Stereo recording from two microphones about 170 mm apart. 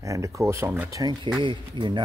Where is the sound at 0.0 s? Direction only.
20° right (ahead or behind).